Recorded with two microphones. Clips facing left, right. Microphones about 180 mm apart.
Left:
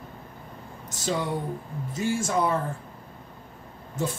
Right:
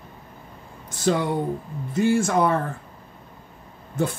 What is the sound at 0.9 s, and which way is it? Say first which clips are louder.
Speech: right 6 dB; 60° right (ahead or behind).